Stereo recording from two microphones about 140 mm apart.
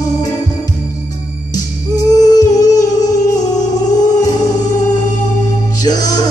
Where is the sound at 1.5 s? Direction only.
25° left (ahead or behind).